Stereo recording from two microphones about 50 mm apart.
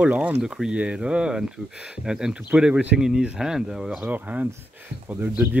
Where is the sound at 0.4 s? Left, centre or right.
Centre.